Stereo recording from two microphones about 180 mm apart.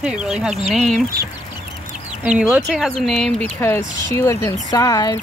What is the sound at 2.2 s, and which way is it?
Speech, 5° right (ahead or behind).